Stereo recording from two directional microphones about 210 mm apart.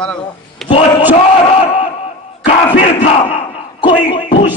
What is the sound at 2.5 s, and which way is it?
Crowd, 25° left (ahead or behind).